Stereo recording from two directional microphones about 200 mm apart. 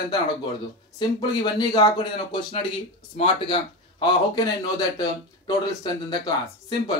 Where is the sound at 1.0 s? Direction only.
20° left (ahead or behind).